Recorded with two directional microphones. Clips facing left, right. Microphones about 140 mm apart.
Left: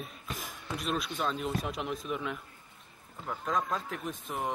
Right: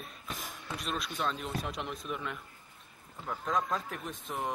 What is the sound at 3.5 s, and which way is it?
Speech, centre (ahead or behind).